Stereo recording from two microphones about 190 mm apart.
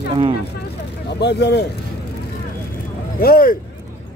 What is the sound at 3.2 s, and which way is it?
Speech, 50° left (ahead or behind).